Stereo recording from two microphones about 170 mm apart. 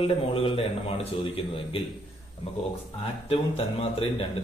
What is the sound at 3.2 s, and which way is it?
A man's voice, 35° left (ahead or behind).